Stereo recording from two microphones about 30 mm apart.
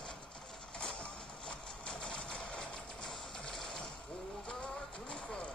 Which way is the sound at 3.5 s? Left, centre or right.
Centre.